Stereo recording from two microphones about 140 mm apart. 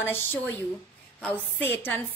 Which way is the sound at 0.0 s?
15° left (ahead or behind).